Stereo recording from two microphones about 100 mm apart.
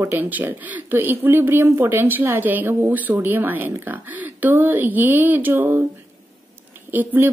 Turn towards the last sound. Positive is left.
turn(degrees=-20)  # may be behind; listen again after turning